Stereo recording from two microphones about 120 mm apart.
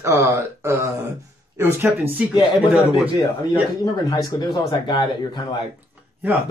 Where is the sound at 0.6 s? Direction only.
25° right (ahead or behind).